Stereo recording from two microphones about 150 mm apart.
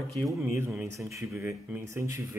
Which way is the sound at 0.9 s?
20° right (ahead or behind).